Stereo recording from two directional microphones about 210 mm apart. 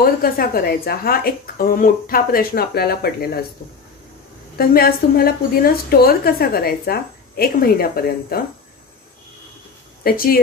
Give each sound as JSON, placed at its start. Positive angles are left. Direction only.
{"t": 0.0, "sound": "a woman's voice", "side_deg": 45}
{"t": 4.6, "sound": "a woman's voice", "side_deg": 45}
{"t": 10.0, "sound": "a woman's voice", "side_deg": 45}